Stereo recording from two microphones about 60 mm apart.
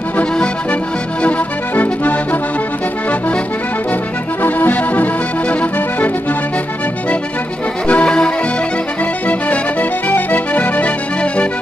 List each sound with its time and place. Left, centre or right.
4.4 s accordion: left
7.9 s accordion: centre
9.3 s music: left